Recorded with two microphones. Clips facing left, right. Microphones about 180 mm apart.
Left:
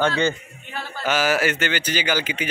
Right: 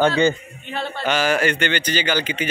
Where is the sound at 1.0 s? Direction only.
5° left (ahead or behind).